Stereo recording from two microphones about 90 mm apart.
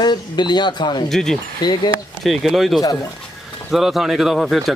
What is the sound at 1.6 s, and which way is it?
Speech, 55° left (ahead or behind).